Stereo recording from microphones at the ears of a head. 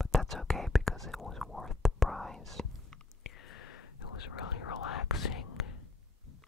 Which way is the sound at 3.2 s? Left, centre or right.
Left.